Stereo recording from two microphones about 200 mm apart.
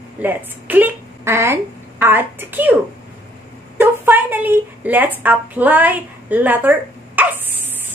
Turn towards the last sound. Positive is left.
turn(degrees=-10)  # may be behind; listen again after turning